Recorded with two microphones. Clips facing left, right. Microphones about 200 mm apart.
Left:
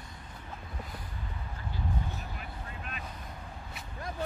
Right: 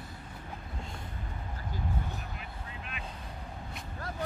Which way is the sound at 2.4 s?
45° left (ahead or behind).